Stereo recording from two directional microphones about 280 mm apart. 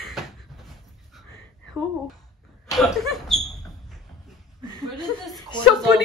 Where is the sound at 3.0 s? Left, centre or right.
Centre.